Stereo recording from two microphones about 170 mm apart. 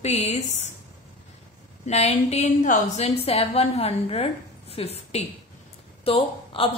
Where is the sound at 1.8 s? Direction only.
40° left (ahead or behind).